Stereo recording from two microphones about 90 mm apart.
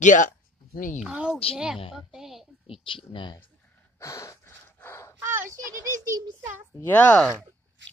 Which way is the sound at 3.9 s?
35° left (ahead or behind).